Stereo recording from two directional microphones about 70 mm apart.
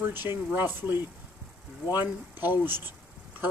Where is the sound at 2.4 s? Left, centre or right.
Right.